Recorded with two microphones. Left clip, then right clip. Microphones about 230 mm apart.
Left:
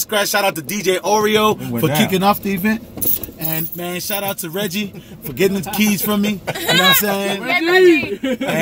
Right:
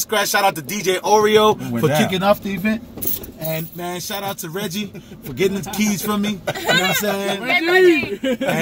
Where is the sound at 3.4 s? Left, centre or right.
Left.